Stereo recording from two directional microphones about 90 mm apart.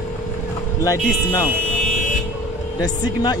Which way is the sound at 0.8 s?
40° left (ahead or behind).